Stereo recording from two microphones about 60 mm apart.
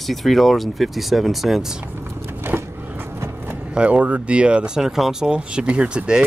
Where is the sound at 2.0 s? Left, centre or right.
Right.